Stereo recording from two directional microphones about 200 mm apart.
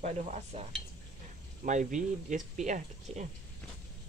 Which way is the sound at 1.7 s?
40° right (ahead or behind).